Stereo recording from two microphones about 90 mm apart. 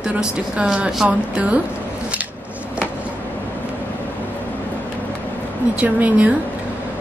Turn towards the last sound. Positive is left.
turn(degrees=-15)  # may be behind; listen again after turning